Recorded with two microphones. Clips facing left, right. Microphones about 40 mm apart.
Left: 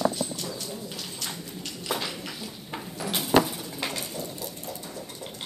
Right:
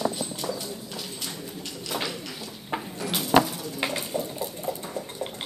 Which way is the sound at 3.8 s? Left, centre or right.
Centre.